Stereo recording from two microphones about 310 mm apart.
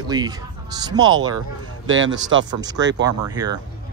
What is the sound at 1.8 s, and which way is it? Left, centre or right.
Speech, right.